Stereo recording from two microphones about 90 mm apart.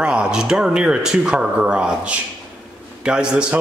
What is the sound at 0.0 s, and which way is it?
A man's voice, 10° right (ahead or behind).